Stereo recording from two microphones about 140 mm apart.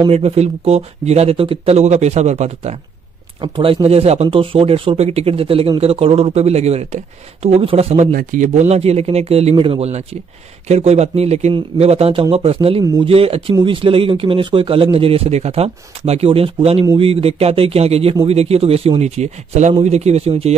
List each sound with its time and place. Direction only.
0.1 s speech: 45° right (ahead or behind)
3.3 s speech: 40° right (ahead or behind)
8.1 s a man's voice: 75° right (ahead or behind); by 20.5 s 50° right (ahead or behind)